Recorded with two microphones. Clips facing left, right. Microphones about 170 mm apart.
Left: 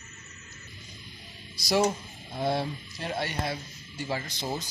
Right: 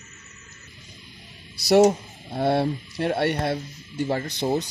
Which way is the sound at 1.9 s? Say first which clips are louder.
Right 8 dB; 65° right (ahead or behind).